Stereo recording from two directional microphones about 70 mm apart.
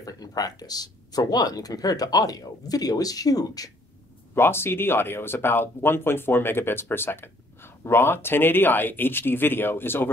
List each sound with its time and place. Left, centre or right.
0.0 s speech: left
4.4 s speech: left